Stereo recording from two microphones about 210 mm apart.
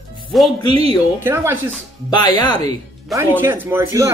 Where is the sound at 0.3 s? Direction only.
Centre (ahead or behind).